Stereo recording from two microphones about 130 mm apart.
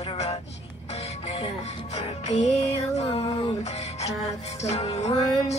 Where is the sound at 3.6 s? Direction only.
55° left (ahead or behind).